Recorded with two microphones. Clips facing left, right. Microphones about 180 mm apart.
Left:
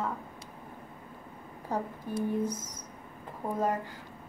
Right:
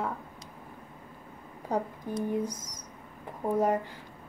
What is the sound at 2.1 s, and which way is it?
Speech, 15° right (ahead or behind).